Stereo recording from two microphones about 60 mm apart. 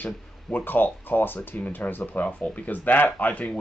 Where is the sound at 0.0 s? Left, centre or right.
Left.